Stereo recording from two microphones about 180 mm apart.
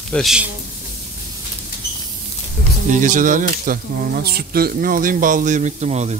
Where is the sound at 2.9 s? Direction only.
45° right (ahead or behind).